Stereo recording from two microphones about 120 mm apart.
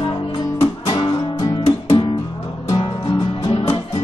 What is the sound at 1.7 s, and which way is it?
Music, 50° left (ahead or behind).